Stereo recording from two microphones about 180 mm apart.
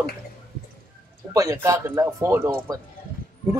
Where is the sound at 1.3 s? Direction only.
15° right (ahead or behind).